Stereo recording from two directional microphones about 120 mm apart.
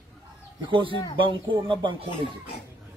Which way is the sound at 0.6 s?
45° right (ahead or behind).